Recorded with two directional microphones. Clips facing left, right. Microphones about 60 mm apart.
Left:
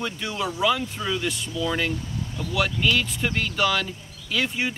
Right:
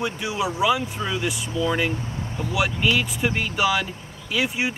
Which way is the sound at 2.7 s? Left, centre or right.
Centre.